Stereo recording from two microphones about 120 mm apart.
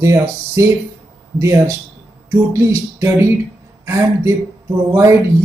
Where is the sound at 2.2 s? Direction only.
25° right (ahead or behind).